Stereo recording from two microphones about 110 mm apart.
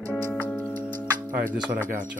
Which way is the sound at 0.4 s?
15° left (ahead or behind).